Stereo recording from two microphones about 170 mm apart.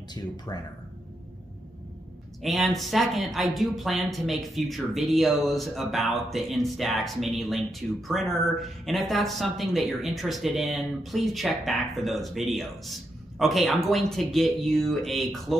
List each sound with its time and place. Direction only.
0.5 s speech: 25° left (ahead or behind)
2.4 s a woman's voice: centre (ahead or behind)